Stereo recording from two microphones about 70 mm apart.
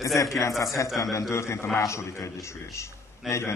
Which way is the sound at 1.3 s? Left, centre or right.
Left.